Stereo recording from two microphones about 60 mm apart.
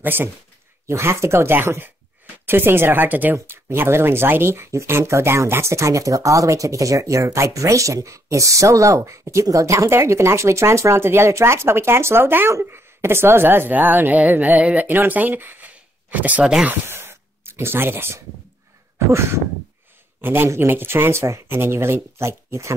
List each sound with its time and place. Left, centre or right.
0.0 s speech: right
0.8 s speech: right
16.8 s a sound: right
18.9 s speech: right
20.2 s a man's voice: right